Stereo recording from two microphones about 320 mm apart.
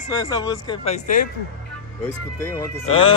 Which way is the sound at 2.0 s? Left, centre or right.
Centre.